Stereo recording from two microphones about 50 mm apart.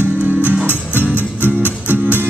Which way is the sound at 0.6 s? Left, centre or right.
Right.